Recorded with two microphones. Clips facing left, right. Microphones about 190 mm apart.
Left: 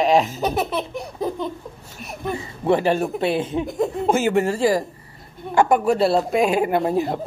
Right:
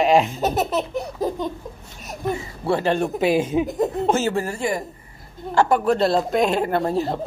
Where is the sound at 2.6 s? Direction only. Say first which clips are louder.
Left 2 dB; 15° left (ahead or behind).